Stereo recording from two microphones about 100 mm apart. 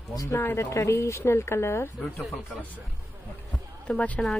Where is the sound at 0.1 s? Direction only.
35° left (ahead or behind).